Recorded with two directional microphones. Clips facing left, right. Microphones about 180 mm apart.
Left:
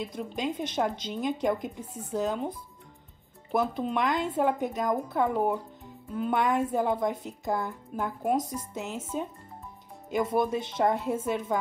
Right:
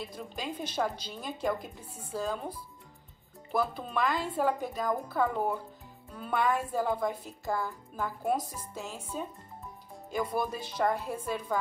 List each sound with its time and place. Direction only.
0.0 s speech: 20° left (ahead or behind)
3.5 s speech: 20° left (ahead or behind)
10.1 s speech: 20° left (ahead or behind)